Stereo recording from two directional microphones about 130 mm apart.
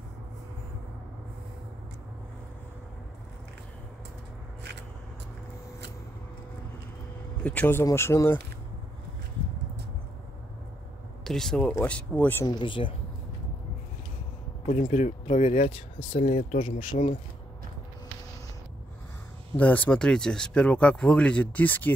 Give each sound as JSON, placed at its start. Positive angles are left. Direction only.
{"t": 7.4, "sound": "speech", "side_deg": 15}
{"t": 11.2, "sound": "speech", "side_deg": 5}
{"t": 12.4, "sound": "speech", "side_deg": 40}
{"t": 14.7, "sound": "speech", "side_deg": 65}
{"t": 16.2, "sound": "speech", "side_deg": 55}
{"t": 16.6, "sound": "speech", "side_deg": 40}
{"t": 19.5, "sound": "speech", "side_deg": 10}